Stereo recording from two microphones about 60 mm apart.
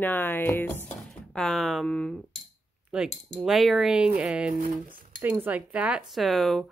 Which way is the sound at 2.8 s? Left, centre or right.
Centre.